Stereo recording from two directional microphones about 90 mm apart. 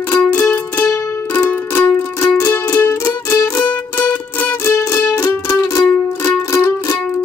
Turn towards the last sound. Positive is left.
turn(degrees=30)  # may be behind; listen again after turning